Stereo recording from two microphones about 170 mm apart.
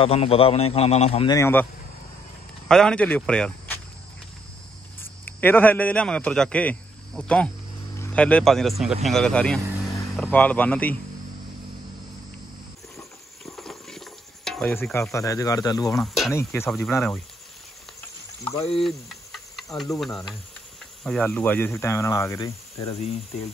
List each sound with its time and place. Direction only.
0.0 s a man's voice: 35° left (ahead or behind)
1.2 s speech: 20° left (ahead or behind)
2.7 s speech: 5° left (ahead or behind)
5.0 s a man's voice: 10° left (ahead or behind)
13.5 s a sound: centre (ahead or behind)
14.7 s speech: 15° left (ahead or behind)
15.9 s speech: centre (ahead or behind)
16.3 s speech: 15° left (ahead or behind)
18.8 s speech: centre (ahead or behind); by 22.5 s 20° left (ahead or behind)
22.8 s a man's voice: 35° left (ahead or behind)